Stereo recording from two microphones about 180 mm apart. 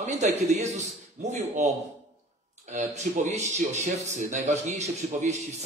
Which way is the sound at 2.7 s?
40° right (ahead or behind).